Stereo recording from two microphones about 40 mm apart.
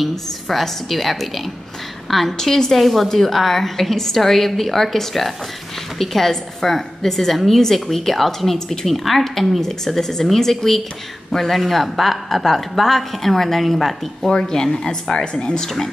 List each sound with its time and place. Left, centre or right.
0.1 s a woman's voice: centre
14.4 s speech: centre